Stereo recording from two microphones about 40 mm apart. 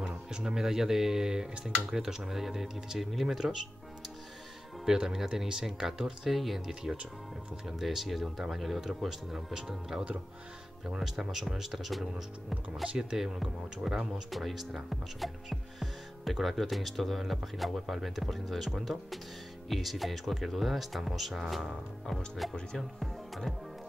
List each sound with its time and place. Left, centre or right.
0.1 s speech: right
4.8 s speech: centre
6.7 s speech: centre
13.1 s speech: centre
19.7 s speech: centre